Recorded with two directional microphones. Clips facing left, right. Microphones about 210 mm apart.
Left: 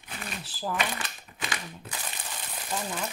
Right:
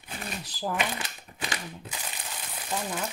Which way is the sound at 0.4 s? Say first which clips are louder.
Right 1 dB; 15° right (ahead or behind).